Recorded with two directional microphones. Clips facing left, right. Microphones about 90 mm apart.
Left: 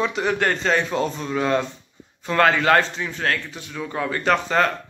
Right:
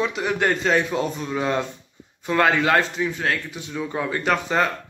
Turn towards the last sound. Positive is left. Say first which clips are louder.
# left 2 dB
turn(degrees=-10)  # may be behind; listen again after turning